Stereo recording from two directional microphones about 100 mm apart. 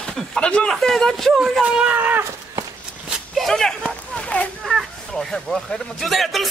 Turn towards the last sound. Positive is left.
turn(degrees=0)  # may be behind; listen again after turning